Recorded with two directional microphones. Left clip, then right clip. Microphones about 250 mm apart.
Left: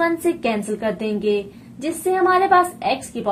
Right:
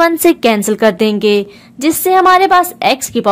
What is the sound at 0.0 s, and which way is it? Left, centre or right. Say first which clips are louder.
A woman's voice: right 10 dB; right.